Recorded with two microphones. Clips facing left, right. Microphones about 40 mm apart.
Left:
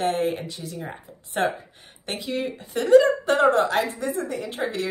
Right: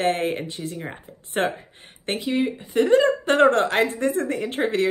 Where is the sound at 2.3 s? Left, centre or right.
Centre.